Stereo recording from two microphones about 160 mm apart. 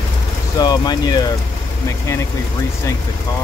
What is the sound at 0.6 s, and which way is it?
Speech, 25° left (ahead or behind).